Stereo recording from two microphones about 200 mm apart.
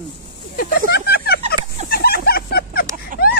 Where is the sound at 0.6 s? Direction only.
50° left (ahead or behind).